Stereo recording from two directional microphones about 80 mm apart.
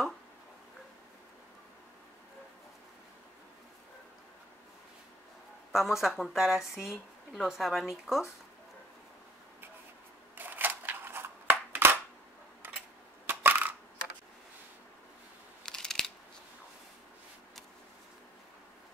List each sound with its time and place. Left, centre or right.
5.7 s speech: centre
10.3 s a sound: right
13.3 s coin: right
15.6 s scissors: centre